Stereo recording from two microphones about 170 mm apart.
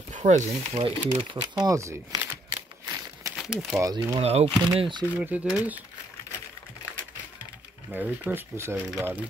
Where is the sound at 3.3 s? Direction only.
Centre (ahead or behind).